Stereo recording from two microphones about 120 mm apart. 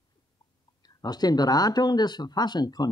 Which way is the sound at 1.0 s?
35° left (ahead or behind).